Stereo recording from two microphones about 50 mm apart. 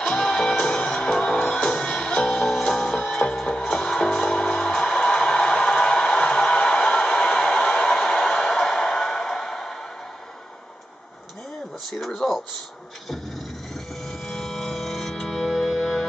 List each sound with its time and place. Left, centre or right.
0.0 s music: centre
11.9 s a sound: centre
14.2 s music: centre